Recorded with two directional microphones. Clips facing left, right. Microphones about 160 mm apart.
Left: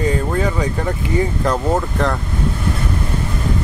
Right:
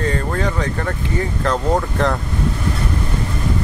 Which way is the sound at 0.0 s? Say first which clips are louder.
Left 2 dB; 10° left (ahead or behind).